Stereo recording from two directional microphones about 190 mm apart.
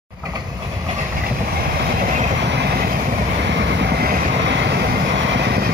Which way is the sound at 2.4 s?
65° right (ahead or behind).